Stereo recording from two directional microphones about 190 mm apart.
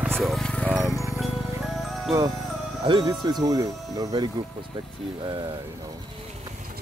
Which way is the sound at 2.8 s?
25° right (ahead or behind).